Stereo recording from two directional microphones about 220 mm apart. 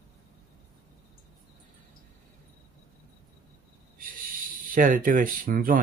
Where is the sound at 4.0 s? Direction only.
40° right (ahead or behind).